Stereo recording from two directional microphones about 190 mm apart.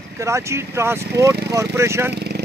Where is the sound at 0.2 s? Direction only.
15° right (ahead or behind).